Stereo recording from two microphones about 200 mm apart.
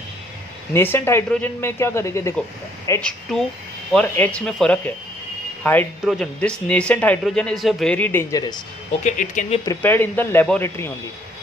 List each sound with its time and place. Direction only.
0.7 s speech: 10° left (ahead or behind)
3.0 s speech: 5° left (ahead or behind)
9.0 s speech: 40° left (ahead or behind)
9.7 s speech: 10° left (ahead or behind)